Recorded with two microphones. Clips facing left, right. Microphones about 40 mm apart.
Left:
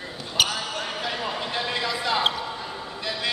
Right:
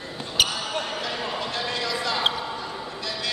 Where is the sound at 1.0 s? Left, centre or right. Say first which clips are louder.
Left 1 dB; centre.